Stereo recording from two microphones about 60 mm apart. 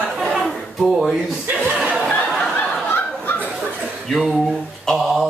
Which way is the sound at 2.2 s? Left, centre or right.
Centre.